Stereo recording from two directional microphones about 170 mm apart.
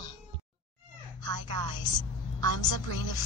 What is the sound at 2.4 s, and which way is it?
Speech, 25° left (ahead or behind).